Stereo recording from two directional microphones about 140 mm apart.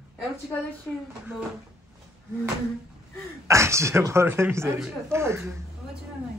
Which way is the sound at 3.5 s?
20° right (ahead or behind).